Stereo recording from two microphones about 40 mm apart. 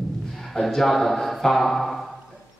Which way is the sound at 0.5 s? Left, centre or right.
Centre.